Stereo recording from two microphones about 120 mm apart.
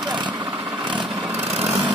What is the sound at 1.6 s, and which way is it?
Lawn mower, 60° right (ahead or behind).